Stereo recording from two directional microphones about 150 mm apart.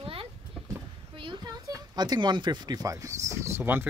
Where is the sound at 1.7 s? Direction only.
25° right (ahead or behind).